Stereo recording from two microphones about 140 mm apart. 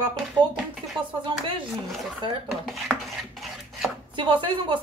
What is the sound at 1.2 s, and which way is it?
Speech, 40° right (ahead or behind).